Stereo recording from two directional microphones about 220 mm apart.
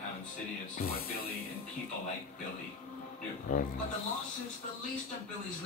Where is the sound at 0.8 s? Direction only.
40° left (ahead or behind).